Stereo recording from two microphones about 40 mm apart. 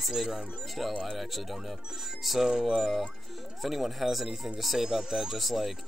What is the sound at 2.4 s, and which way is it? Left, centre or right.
Speech, centre.